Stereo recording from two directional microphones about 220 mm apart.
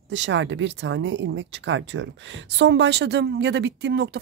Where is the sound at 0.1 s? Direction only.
55° right (ahead or behind).